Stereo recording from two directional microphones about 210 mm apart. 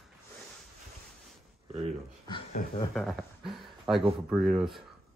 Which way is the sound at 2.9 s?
Centre (ahead or behind).